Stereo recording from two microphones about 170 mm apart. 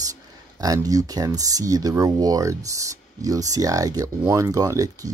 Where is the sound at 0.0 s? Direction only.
20° right (ahead or behind).